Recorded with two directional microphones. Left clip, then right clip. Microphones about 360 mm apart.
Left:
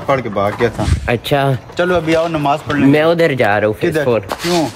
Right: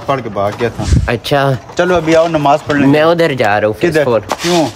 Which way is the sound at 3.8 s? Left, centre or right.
Right.